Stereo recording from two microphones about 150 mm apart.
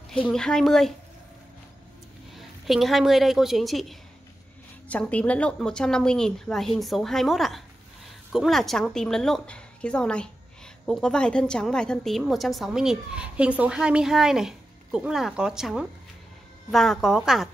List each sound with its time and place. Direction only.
0.1 s a woman's voice: 5° left (ahead or behind)
2.3 s a woman's voice: centre (ahead or behind)